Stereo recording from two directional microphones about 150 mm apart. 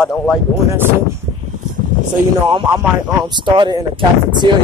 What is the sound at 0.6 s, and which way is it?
Speech, 15° right (ahead or behind).